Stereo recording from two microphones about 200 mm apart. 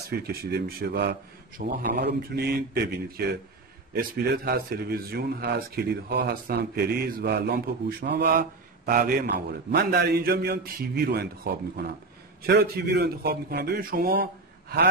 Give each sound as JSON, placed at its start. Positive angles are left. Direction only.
{"t": 0.3, "sound": "speech", "side_deg": -50}